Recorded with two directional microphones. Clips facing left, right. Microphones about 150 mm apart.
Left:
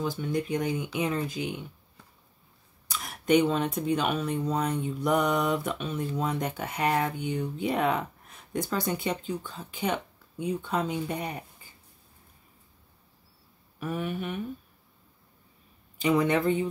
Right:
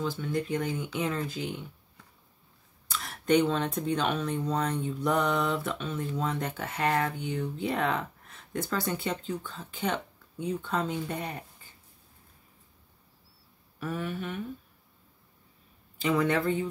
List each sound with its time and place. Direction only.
0.0 s speech: 15° left (ahead or behind)
2.9 s speech: 15° left (ahead or behind)
13.7 s speech: 15° left (ahead or behind)
16.0 s speech: 15° left (ahead or behind)